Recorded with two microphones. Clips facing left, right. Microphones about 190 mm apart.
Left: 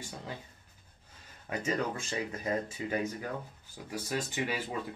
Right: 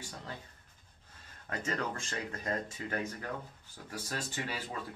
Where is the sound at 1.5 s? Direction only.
10° left (ahead or behind).